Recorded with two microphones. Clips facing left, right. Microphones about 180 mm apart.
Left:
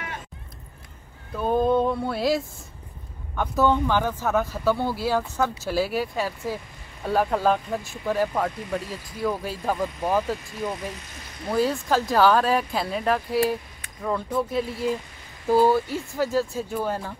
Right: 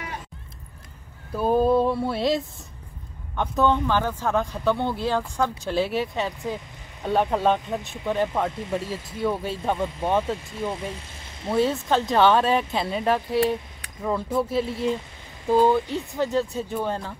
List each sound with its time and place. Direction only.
1.3 s a sound: 5° right (ahead or behind)
3.3 s speech: 10° left (ahead or behind)
6.2 s speech: 20° right (ahead or behind)
7.3 s speech: centre (ahead or behind)
8.5 s speech: 25° right (ahead or behind)
9.2 s speech: centre (ahead or behind)
10.0 s speech: 25° right (ahead or behind)
11.5 s speech: centre (ahead or behind)